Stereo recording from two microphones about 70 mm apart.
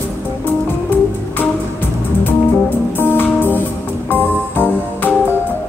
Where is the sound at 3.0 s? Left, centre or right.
Left.